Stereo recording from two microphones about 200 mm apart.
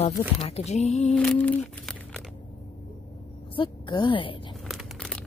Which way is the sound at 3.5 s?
25° left (ahead or behind).